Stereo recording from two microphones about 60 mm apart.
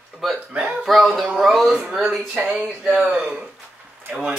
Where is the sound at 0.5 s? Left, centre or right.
Right.